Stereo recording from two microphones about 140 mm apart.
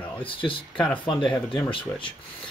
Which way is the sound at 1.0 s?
35° left (ahead or behind).